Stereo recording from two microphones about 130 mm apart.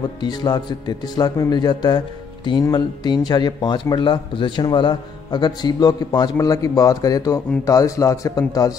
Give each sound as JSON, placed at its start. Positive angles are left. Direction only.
{"t": 0.2, "sound": "a man's voice", "side_deg": 35}